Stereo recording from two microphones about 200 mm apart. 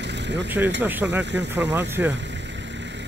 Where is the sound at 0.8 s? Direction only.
10° right (ahead or behind).